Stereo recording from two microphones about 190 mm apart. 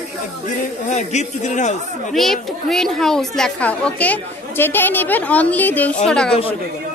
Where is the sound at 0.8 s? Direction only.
35° left (ahead or behind).